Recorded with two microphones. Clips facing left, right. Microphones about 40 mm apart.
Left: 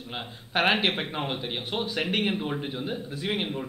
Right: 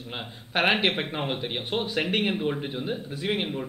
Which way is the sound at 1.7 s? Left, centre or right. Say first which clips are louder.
Right 2 dB; centre.